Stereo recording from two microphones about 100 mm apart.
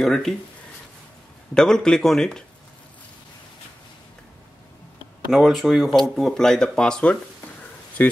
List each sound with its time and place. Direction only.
0.0 s speech: 5° left (ahead or behind)
1.5 s speech: 5° left (ahead or behind)
5.3 s speech: centre (ahead or behind); by 8.1 s 20° left (ahead or behind)